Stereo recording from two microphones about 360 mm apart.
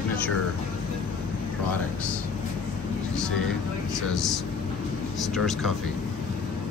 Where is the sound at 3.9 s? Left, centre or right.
Centre.